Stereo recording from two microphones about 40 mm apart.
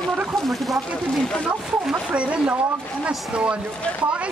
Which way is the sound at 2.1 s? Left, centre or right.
Right.